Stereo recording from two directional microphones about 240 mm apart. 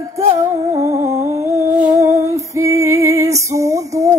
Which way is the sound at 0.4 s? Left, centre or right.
Centre.